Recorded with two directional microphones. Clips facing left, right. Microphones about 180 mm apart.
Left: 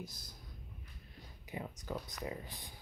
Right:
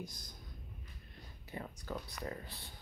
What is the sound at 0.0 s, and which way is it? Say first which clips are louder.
Speech: right 1 dB; 5° left (ahead or behind).